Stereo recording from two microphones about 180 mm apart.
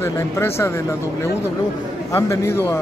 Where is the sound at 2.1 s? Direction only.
15° left (ahead or behind).